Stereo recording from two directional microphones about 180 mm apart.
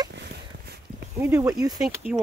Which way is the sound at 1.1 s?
15° right (ahead or behind).